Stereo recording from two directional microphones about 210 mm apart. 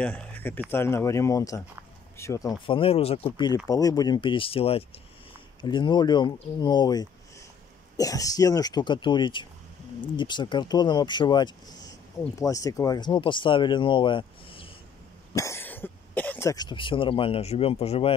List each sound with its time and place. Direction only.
0.0 s speech: 5° left (ahead or behind); by 3.3 s 30° left (ahead or behind)
3.3 s speech: 20° left (ahead or behind)
15.3 s speech: 15° left (ahead or behind)